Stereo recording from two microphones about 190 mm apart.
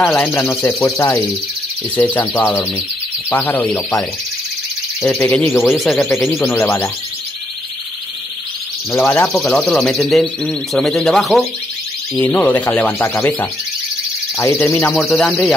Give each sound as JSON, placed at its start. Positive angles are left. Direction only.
{"t": 0.0, "sound": "speech", "side_deg": 10}
{"t": 5.2, "sound": "speech", "side_deg": 15}
{"t": 5.7, "sound": "speech", "side_deg": 0}
{"t": 6.0, "sound": "speech", "side_deg": 15}
{"t": 8.9, "sound": "speech", "side_deg": 15}
{"t": 15.0, "sound": "speech", "side_deg": 0}